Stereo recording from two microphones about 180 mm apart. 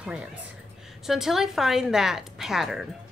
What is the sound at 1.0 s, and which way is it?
A woman's voice, centre (ahead or behind).